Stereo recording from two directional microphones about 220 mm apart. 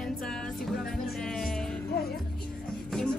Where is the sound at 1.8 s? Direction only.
45° left (ahead or behind).